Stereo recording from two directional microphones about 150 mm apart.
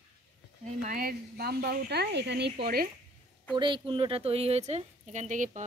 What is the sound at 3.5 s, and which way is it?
A woman's voice, 30° right (ahead or behind).